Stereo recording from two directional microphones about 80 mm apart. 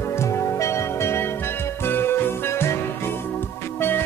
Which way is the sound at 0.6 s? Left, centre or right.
Left.